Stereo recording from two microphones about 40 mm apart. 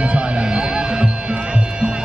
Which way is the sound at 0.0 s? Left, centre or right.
Right.